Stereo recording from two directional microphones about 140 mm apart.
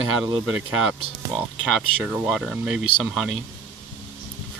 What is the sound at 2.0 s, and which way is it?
Speech, 5° right (ahead or behind).